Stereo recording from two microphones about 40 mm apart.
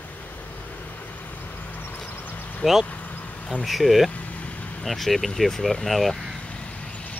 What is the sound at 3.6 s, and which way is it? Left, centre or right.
Speech, centre.